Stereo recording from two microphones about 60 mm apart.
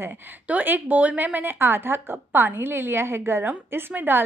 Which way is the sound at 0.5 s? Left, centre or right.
Right.